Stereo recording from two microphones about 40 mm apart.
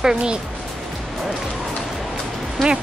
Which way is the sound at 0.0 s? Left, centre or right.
Centre.